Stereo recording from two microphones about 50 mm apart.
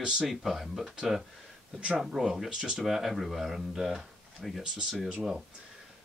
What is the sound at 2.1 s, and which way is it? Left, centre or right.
Speech, centre.